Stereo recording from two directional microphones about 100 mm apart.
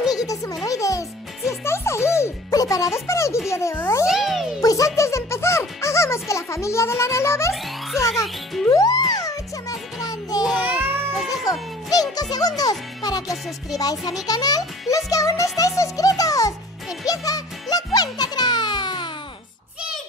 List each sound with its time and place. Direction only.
0.1 s music: 35° left (ahead or behind)
4.0 s music: 5° right (ahead or behind)
4.6 s music: 35° left (ahead or behind)
8.6 s music: 40° left (ahead or behind)
10.6 s music: 20° right (ahead or behind)
11.5 s music: 35° left (ahead or behind)
11.9 s a child's voice: 40° left (ahead or behind)
14.2 s music: 40° left (ahead or behind)